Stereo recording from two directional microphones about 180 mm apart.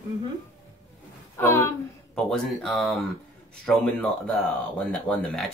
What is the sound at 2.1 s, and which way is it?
Speech, centre (ahead or behind).